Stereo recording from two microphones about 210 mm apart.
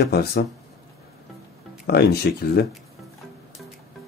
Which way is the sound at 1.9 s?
50° left (ahead or behind).